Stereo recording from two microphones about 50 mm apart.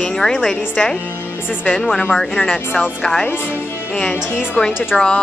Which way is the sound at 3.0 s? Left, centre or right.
Centre.